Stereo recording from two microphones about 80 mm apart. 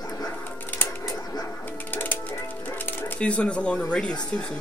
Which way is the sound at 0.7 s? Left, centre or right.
Left.